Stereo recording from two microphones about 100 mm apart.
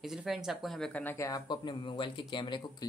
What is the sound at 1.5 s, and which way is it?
Speech, 50° left (ahead or behind).